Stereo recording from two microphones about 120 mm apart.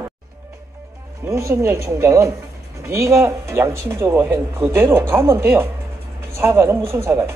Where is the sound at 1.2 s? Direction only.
25° right (ahead or behind).